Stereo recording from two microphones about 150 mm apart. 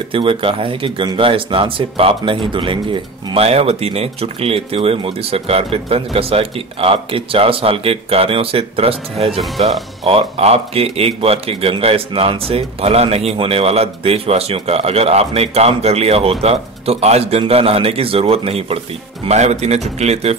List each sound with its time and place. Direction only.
0.1 s speech: 35° right (ahead or behind)